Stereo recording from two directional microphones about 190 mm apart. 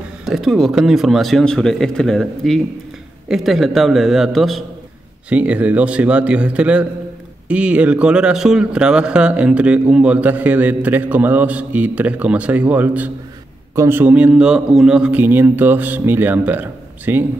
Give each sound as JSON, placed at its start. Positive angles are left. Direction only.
{"t": 0.2, "sound": "speech", "side_deg": 0}